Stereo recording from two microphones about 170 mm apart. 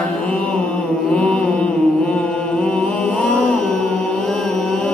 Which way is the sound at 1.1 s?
5° left (ahead or behind).